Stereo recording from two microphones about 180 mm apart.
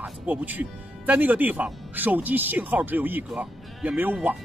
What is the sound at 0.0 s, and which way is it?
A man's voice, 10° right (ahead or behind).